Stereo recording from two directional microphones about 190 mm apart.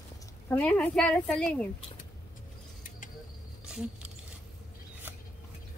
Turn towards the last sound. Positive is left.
turn(degrees=-5)  # may be behind; listen again after turning